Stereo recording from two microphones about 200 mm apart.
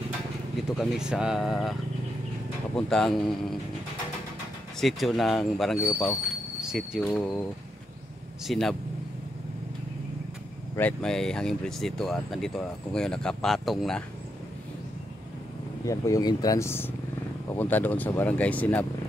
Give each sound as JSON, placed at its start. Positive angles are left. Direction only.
{"t": 0.7, "sound": "speech", "side_deg": -5}
{"t": 4.7, "sound": "speech", "side_deg": 0}
{"t": 7.0, "sound": "speech", "side_deg": 10}
{"t": 8.5, "sound": "speech", "side_deg": 0}
{"t": 10.8, "sound": "speech", "side_deg": 5}
{"t": 15.8, "sound": "speech", "side_deg": 15}